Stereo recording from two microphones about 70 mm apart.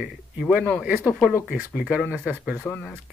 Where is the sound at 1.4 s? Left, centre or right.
Centre.